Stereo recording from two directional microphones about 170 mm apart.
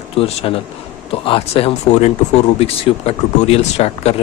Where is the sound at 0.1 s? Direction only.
35° left (ahead or behind).